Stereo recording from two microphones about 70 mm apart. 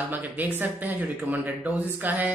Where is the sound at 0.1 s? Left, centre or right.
Right.